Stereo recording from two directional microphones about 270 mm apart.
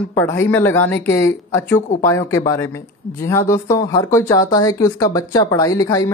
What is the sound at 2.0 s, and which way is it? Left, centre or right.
Speech, centre.